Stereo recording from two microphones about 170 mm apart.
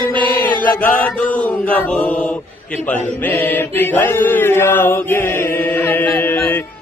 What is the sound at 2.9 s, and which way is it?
Mantra, 10° left (ahead or behind).